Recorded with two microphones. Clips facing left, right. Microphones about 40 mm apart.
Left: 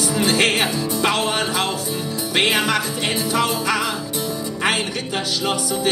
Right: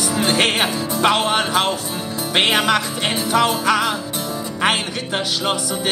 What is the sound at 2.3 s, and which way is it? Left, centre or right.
Music, right.